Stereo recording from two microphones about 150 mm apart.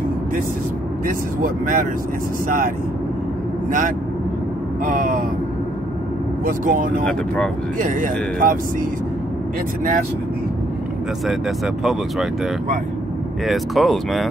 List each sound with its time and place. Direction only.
1.0 s speech: 65° right (ahead or behind)
4.8 s speech: 70° right (ahead or behind)
6.4 s speech: 65° right (ahead or behind)
11.2 s speech: centre (ahead or behind)
13.5 s speech: centre (ahead or behind)